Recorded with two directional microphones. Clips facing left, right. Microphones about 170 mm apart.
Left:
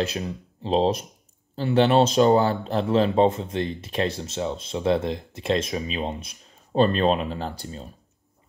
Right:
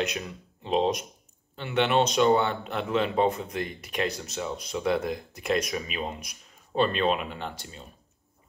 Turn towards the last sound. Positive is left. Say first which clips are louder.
# left 5 dB
turn(degrees=35)  # may be behind; listen again after turning